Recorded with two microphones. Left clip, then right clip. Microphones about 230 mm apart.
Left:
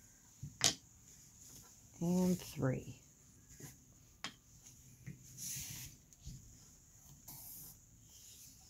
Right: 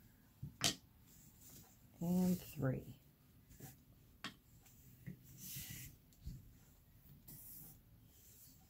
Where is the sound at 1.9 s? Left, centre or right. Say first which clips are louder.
Left 4 dB; left.